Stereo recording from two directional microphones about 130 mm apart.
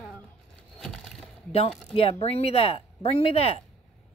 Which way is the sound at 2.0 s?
50° left (ahead or behind).